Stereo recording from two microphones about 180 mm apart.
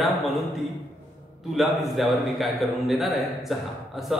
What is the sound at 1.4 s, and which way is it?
A man's voice, centre (ahead or behind).